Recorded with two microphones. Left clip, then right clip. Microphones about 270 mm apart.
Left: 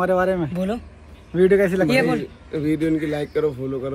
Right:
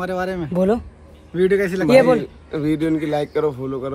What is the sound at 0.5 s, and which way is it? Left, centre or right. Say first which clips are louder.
Speech: right 8 dB; right.